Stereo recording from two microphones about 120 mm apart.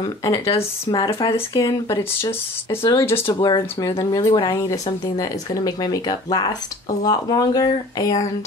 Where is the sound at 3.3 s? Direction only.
35° left (ahead or behind).